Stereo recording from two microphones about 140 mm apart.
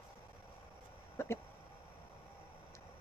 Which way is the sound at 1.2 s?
20° left (ahead or behind).